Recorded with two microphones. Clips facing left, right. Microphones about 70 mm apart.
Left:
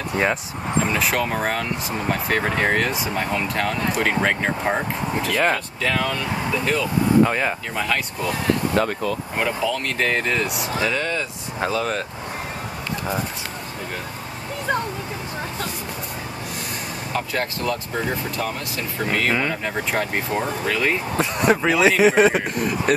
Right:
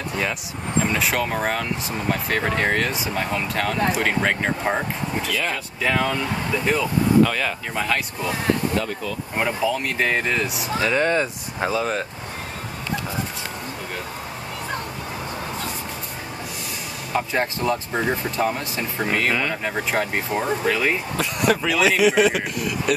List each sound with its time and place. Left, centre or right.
0.8 s speech: centre
5.3 s speech: left
5.8 s speech: centre
7.2 s speech: left
7.7 s speech: centre
8.7 s speech: left
9.4 s speech: centre
11.0 s speech: right
11.6 s speech: centre
17.1 s speech: right
18.9 s speech: centre
21.2 s speech: left